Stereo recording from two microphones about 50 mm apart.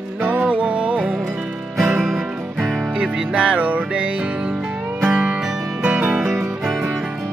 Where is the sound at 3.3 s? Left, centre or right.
Right.